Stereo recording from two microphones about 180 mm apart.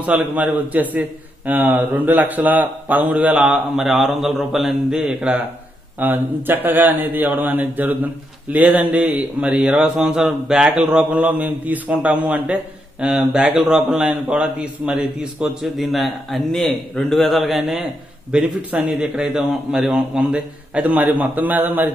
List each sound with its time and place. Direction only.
0.0 s a man's voice: 10° right (ahead or behind)